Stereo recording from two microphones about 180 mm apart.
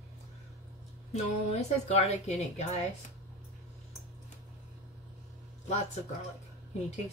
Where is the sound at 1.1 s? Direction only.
35° left (ahead or behind).